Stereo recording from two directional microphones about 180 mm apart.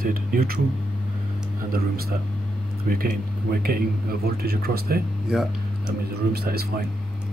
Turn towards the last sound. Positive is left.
turn(degrees=-60)  # may be behind; listen again after turning